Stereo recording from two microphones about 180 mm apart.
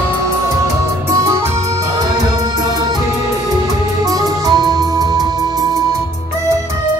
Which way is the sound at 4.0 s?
20° right (ahead or behind).